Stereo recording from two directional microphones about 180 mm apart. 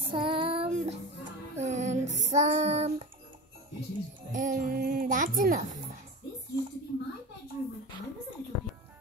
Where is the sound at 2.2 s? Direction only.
40° right (ahead or behind).